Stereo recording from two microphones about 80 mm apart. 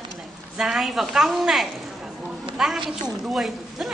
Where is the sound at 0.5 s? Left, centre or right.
Centre.